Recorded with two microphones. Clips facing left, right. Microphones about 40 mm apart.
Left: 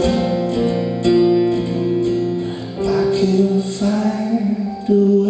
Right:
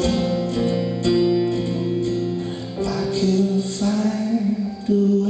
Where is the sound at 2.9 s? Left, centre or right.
Left.